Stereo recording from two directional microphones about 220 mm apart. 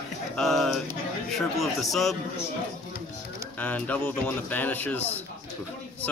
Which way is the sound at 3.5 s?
5° left (ahead or behind).